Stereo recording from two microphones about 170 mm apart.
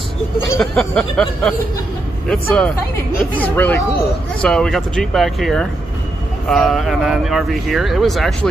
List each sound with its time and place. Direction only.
0.6 s speech: 5° left (ahead or behind)